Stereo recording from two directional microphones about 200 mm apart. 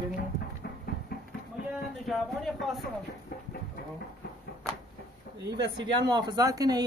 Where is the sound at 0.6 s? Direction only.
50° left (ahead or behind).